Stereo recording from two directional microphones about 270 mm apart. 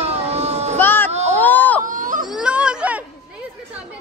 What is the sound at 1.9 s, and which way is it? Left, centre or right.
Baby cry, right.